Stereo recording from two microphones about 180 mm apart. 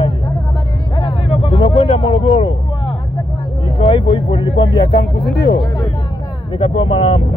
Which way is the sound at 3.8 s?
30° left (ahead or behind).